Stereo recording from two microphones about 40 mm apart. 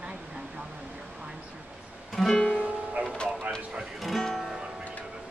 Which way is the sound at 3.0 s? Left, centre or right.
Right.